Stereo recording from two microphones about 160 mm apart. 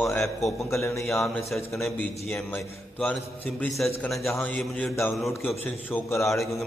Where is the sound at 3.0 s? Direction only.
10° left (ahead or behind).